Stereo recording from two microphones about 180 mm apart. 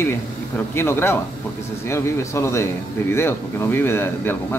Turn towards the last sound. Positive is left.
turn(degrees=10)  # may be behind; listen again after turning